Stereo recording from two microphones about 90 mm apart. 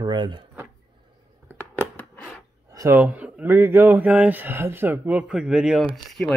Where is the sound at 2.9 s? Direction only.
20° right (ahead or behind).